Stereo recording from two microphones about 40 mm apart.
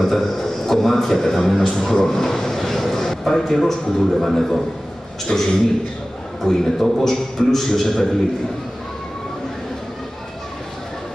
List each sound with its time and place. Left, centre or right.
0.0 s a man's voice: centre
5.3 s a man's voice: left
6.4 s a man's voice: centre